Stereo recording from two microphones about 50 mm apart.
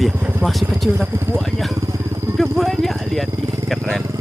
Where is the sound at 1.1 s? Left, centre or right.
Right.